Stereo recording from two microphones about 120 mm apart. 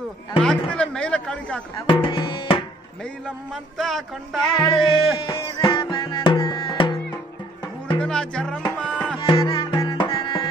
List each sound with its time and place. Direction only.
0.4 s speech: 5° left (ahead or behind)
1.9 s tabla: 45° left (ahead or behind)
3.0 s a man's voice: 5° left (ahead or behind)
4.6 s music: 45° left (ahead or behind)
8.0 s speech: 5° left (ahead or behind)
8.7 s music: 10° left (ahead or behind)
9.2 s music: 45° left (ahead or behind)